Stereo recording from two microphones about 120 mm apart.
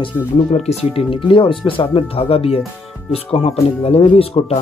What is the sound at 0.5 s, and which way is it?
Speech, 60° left (ahead or behind).